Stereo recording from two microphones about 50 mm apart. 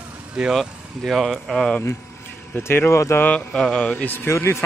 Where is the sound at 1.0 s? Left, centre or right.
Centre.